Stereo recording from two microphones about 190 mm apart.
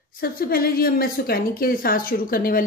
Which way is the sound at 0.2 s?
50° left (ahead or behind).